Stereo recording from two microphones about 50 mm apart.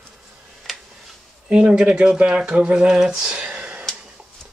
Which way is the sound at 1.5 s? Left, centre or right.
Centre.